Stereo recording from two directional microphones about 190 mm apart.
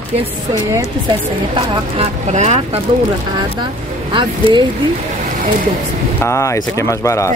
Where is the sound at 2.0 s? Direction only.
35° right (ahead or behind).